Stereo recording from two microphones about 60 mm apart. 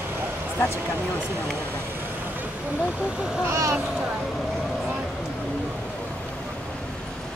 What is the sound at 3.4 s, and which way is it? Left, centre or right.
Speech, right.